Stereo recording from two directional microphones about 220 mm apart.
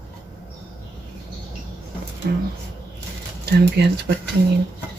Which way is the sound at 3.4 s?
45° right (ahead or behind).